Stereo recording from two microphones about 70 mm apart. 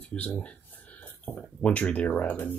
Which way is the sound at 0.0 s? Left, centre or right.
Centre.